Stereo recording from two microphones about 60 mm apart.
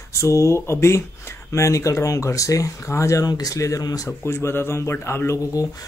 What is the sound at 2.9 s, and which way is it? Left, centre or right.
Speech, left.